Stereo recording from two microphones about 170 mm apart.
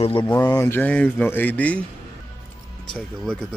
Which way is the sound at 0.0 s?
30° left (ahead or behind).